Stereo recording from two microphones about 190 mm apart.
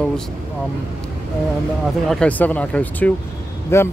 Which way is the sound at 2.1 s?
5° left (ahead or behind).